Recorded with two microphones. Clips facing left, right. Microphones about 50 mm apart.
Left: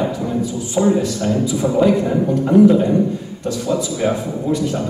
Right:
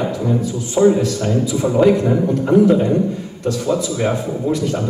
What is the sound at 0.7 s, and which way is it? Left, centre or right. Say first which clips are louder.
A man's voice: right 3 dB; centre.